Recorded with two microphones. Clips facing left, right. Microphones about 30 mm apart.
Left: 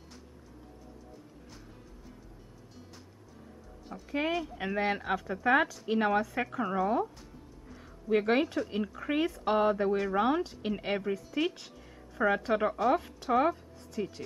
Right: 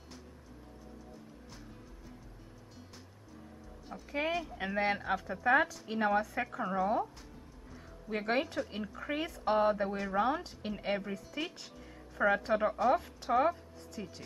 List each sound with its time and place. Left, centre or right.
3.9 s speech: centre
5.4 s speech: centre
8.1 s speech: centre
10.1 s speech: centre